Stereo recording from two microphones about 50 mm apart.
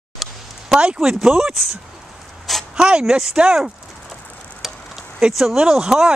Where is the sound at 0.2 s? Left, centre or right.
Centre.